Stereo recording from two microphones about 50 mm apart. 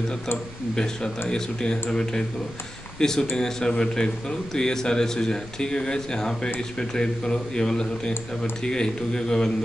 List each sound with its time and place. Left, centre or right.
1.3 s a man's voice: centre